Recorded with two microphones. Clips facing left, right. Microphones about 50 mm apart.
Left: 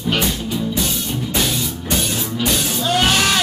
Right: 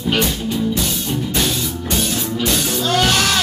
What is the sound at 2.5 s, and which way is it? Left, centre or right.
Music, centre.